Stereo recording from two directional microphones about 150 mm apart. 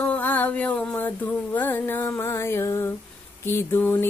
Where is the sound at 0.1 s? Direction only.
10° left (ahead or behind).